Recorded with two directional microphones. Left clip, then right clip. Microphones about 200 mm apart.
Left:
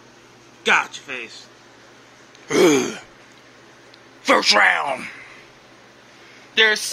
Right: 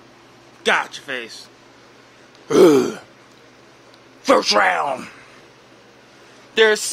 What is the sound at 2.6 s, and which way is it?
Speech, 15° right (ahead or behind).